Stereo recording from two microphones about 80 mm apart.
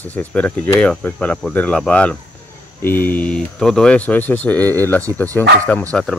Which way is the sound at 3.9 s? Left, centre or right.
Centre.